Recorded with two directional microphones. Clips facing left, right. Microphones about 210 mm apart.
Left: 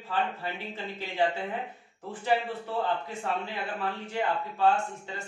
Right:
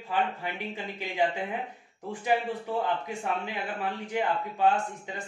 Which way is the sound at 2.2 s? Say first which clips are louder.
Even; 15° right (ahead or behind).